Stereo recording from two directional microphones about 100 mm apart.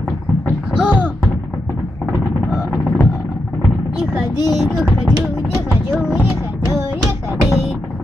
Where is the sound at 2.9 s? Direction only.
10° left (ahead or behind).